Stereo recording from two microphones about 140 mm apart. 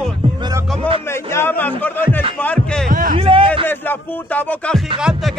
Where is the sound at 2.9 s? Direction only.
75° right (ahead or behind).